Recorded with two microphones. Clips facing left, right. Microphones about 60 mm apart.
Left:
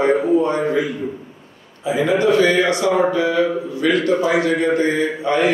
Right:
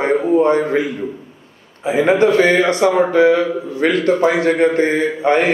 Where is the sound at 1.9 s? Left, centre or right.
Right.